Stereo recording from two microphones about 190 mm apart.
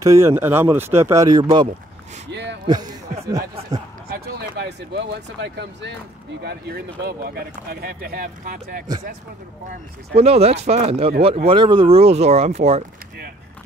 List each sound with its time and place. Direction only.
0.0 s speech: 15° right (ahead or behind)
2.3 s a sound: 65° right (ahead or behind)
2.6 s speech: 20° right (ahead or behind)
4.1 s speech: 60° right (ahead or behind)
6.4 s speech: 55° right (ahead or behind)
10.1 s speech: 30° right (ahead or behind)